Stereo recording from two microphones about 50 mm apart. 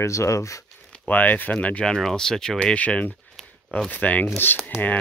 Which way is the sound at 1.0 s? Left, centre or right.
Left.